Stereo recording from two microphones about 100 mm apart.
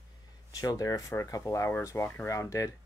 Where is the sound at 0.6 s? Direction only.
40° left (ahead or behind).